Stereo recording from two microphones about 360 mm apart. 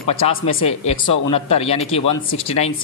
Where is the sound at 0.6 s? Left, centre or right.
Centre.